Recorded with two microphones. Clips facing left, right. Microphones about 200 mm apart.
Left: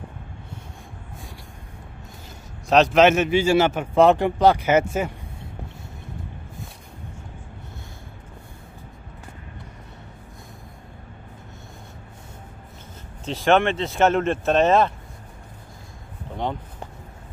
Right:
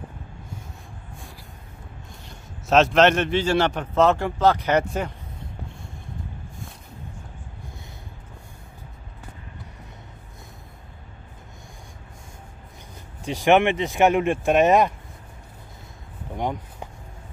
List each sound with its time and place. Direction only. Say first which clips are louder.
2.7 s speech: left 1 dB; centre (ahead or behind)
13.2 s speech: right 1 dB; 15° right (ahead or behind)
16.3 s a sound: even; 15° right (ahead or behind)